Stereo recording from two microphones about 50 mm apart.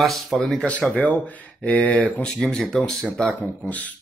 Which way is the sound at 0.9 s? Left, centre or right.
Left.